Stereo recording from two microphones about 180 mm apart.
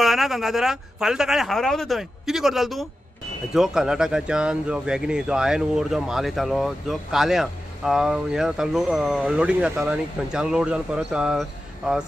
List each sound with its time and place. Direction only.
0.0 s speech: centre (ahead or behind)